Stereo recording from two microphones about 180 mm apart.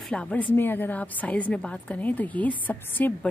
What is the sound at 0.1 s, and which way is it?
A woman's voice, 5° left (ahead or behind).